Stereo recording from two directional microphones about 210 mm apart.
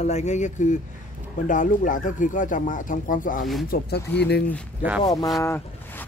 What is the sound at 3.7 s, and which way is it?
Speech, 50° left (ahead or behind).